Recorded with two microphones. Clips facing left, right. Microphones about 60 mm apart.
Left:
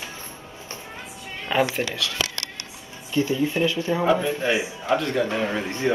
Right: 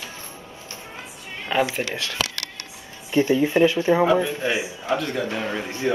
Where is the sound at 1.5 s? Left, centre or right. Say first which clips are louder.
Even; centre.